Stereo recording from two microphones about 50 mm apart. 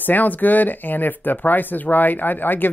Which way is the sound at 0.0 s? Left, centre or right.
Left.